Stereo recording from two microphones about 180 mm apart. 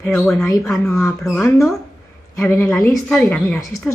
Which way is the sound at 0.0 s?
5° left (ahead or behind).